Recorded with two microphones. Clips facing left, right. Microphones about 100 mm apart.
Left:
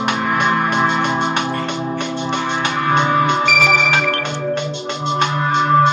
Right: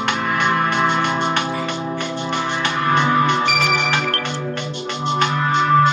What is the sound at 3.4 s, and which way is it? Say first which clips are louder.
Music: left 3 dB; 15° right (ahead or behind).